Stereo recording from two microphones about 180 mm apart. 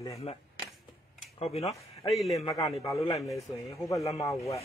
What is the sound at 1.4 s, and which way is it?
Speech, 35° left (ahead or behind).